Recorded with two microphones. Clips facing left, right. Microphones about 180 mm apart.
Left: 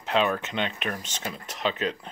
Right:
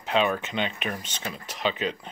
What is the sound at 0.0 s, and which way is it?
Speech, centre (ahead or behind).